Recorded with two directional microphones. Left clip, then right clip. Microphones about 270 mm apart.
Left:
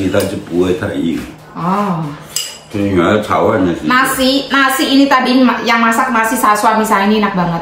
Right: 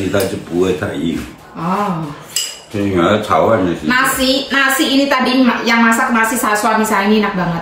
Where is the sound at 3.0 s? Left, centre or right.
Centre.